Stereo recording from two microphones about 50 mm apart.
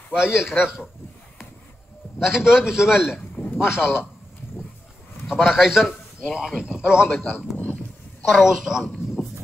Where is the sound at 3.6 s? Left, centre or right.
Left.